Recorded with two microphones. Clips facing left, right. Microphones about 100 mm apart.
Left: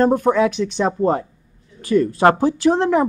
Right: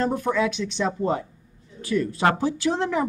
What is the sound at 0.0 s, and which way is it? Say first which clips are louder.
Speech: left 8 dB; 45° left (ahead or behind).